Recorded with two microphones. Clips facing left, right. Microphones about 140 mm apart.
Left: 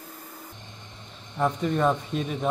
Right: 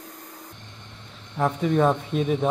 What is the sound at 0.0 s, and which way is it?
Music, 5° left (ahead or behind).